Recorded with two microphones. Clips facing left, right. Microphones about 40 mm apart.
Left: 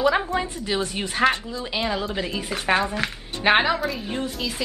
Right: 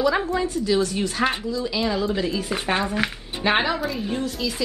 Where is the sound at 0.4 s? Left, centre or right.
Left.